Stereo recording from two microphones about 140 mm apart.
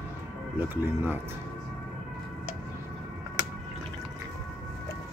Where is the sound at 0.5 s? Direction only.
15° right (ahead or behind).